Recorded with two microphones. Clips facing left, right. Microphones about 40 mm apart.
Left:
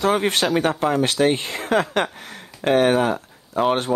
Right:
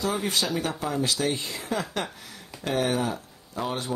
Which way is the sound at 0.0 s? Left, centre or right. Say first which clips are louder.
Left 8 dB; left.